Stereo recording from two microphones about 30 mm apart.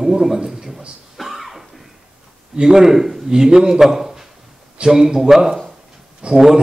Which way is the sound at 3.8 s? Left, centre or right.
Centre.